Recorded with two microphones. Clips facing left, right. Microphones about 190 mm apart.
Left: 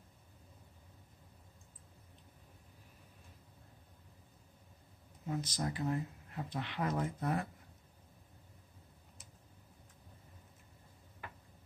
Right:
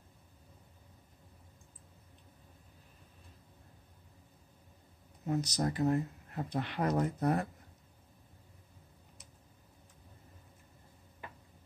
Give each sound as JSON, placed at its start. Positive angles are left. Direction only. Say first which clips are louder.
{"t": 5.2, "sound": "speech", "louder": "right 5 dB", "side_deg": -40}